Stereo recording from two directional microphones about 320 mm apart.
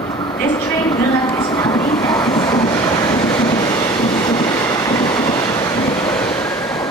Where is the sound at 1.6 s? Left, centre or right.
Centre.